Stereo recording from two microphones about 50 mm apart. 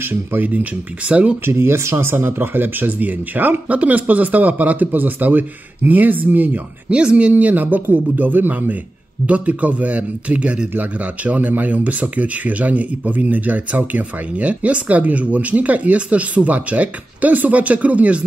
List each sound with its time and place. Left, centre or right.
0.0 s speech: right
1.0 s a man's voice: right
1.4 s speech: right
6.9 s a man's voice: centre